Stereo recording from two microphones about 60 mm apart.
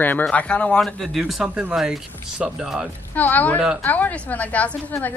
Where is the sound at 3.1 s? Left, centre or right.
Left.